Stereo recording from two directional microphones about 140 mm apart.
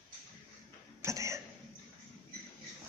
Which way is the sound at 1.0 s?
20° right (ahead or behind).